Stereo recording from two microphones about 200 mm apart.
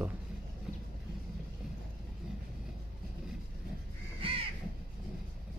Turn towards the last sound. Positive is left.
turn(degrees=-25)  # may be behind; listen again after turning